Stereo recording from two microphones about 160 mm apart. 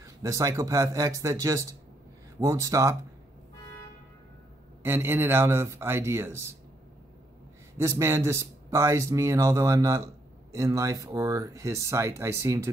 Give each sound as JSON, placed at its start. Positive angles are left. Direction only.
{"t": 0.0, "sound": "speech", "side_deg": -20}
{"t": 4.8, "sound": "a man's voice", "side_deg": -15}
{"t": 7.7, "sound": "speech", "side_deg": -20}